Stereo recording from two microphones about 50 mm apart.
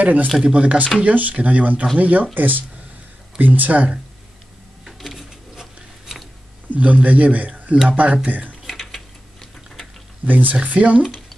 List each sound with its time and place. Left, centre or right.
0.0 s speech: right
0.4 s speech: right
4.8 s a sound: centre
6.7 s a man's voice: right
8.6 s mechanisms: centre
10.2 s speech: right